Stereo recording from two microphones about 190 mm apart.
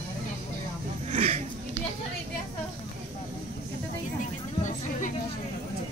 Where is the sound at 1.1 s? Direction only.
30° right (ahead or behind).